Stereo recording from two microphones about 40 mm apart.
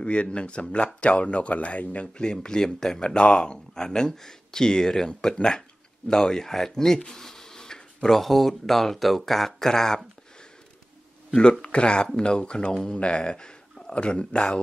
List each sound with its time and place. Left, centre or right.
0.0 s speech: left
2.4 s speech: centre
11.2 s speech: centre